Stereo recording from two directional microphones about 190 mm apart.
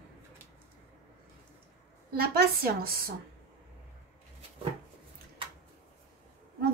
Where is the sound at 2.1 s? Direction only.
55° right (ahead or behind).